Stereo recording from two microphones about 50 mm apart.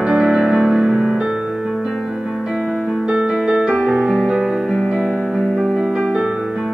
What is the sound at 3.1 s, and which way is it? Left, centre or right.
Music, centre.